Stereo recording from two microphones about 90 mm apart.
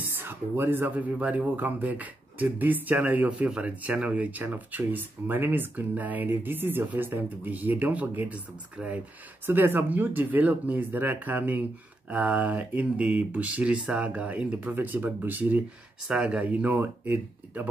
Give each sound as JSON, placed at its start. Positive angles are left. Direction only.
{"t": 0.2, "sound": "speech", "side_deg": -25}